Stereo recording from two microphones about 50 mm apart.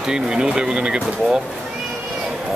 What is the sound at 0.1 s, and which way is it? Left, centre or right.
Speech, centre.